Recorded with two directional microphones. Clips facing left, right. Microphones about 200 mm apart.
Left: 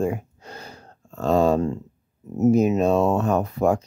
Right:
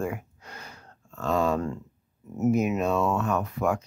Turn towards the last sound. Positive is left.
turn(degrees=30)  # may be behind; listen again after turning